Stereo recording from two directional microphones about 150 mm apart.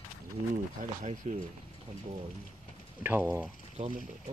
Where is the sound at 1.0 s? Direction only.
60° right (ahead or behind).